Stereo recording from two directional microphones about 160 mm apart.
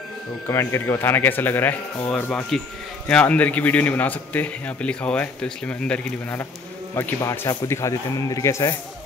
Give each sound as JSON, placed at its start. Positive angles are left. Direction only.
{"t": 0.5, "sound": "a man's voice", "side_deg": 15}
{"t": 7.0, "sound": "speech", "side_deg": 20}